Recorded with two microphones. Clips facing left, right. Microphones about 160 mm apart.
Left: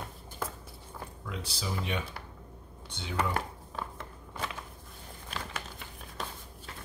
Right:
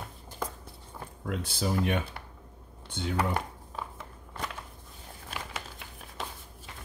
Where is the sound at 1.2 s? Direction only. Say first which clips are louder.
Right 8 dB; 50° right (ahead or behind).